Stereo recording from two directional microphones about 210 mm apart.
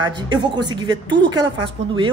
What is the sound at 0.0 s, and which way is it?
Speech, 20° right (ahead or behind).